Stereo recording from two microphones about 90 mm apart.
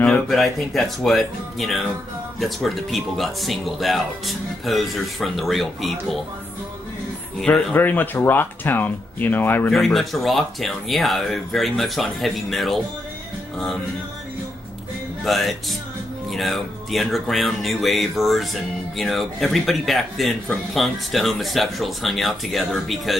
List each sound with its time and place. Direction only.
0.3 s speech: centre (ahead or behind)
7.4 s speech: 15° left (ahead or behind)
9.7 s speech: 5° left (ahead or behind)
15.2 s speech: centre (ahead or behind)